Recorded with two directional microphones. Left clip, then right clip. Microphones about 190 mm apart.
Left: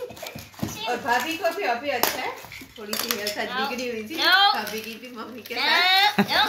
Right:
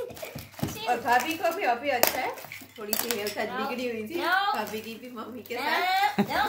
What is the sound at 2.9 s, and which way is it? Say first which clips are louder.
Speech: left 3 dB; 50° right (ahead or behind).